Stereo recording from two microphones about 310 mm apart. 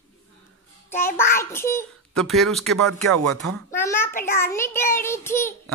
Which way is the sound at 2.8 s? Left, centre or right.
Right.